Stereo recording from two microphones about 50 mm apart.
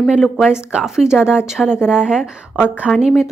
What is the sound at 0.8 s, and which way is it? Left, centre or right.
A woman's voice, centre.